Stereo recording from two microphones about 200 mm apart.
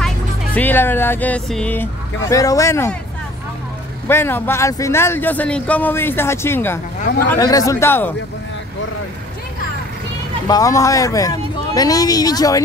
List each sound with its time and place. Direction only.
0.6 s a man's voice: 10° left (ahead or behind)
4.1 s a man's voice: 10° left (ahead or behind)
10.5 s a man's voice: 15° left (ahead or behind)